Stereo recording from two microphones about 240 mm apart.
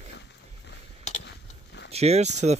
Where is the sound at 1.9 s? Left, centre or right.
Right.